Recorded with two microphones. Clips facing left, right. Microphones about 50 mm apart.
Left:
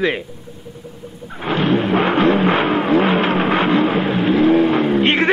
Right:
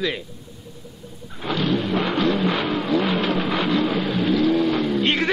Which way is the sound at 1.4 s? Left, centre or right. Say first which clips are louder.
Left 5 dB; left.